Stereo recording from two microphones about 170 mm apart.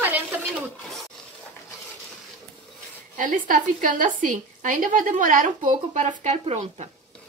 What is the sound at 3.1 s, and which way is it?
A woman's voice, 50° right (ahead or behind).